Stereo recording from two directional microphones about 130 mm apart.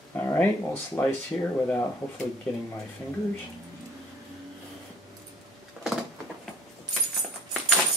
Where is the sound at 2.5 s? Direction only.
5° left (ahead or behind).